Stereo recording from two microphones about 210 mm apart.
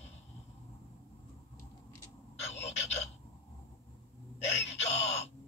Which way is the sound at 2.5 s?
30° left (ahead or behind).